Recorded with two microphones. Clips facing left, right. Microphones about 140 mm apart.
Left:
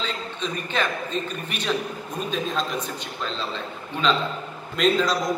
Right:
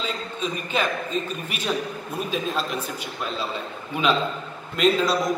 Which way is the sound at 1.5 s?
5° right (ahead or behind).